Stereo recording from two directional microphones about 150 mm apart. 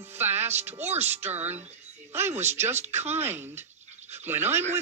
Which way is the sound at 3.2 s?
15° right (ahead or behind).